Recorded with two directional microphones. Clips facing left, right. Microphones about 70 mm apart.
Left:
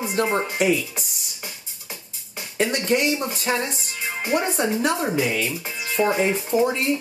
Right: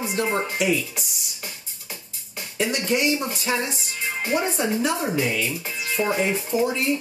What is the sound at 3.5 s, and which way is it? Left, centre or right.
Speech, left.